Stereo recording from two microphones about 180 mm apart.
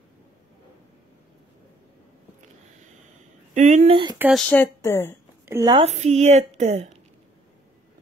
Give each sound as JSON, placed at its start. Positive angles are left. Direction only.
{"t": 3.5, "sound": "a woman's voice", "side_deg": -40}
{"t": 4.2, "sound": "speech", "side_deg": 0}
{"t": 5.4, "sound": "a sound", "side_deg": -15}
{"t": 5.7, "sound": "a woman's voice", "side_deg": -35}